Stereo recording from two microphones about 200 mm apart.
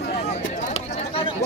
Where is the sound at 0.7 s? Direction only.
30° left (ahead or behind).